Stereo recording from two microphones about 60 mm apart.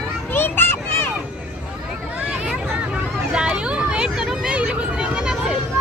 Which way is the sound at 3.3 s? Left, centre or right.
Centre.